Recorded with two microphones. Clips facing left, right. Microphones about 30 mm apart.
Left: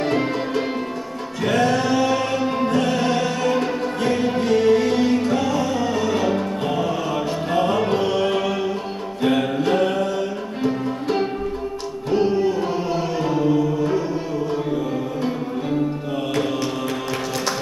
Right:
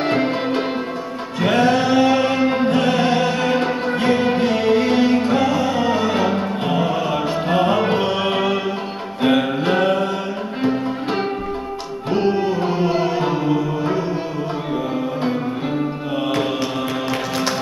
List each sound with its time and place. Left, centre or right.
0.0 s music: right
9.2 s mantra: right
10.6 s music: right